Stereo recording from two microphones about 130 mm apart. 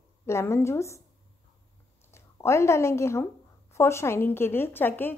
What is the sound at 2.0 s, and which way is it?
A woman's voice, 20° left (ahead or behind).